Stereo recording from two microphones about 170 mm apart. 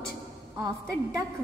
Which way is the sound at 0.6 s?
20° right (ahead or behind).